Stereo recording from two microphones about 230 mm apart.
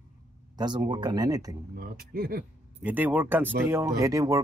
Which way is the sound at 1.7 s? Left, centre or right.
Right.